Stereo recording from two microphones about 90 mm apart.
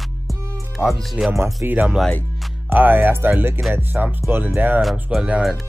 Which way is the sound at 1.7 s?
15° right (ahead or behind).